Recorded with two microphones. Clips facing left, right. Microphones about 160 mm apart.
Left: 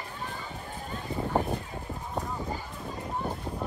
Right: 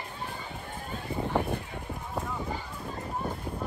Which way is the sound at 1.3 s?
40° left (ahead or behind).